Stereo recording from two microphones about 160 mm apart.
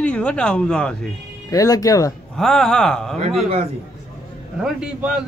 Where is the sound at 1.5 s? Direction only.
20° left (ahead or behind).